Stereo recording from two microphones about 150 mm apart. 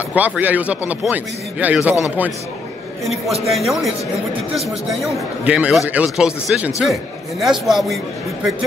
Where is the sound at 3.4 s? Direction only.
Centre (ahead or behind).